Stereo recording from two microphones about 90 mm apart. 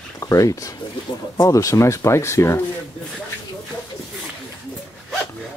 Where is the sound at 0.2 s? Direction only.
35° left (ahead or behind).